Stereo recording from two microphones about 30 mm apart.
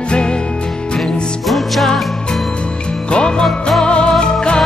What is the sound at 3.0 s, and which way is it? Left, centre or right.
Music, left.